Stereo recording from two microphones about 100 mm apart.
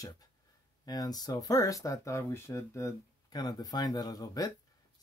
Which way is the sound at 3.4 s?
40° left (ahead or behind).